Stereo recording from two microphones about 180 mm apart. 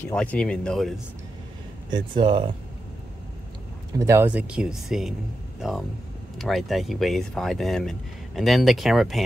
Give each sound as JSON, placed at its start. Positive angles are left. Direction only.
{"t": 0.0, "sound": "speech", "side_deg": 5}
{"t": 1.9, "sound": "speech", "side_deg": -25}
{"t": 4.0, "sound": "speech", "side_deg": -15}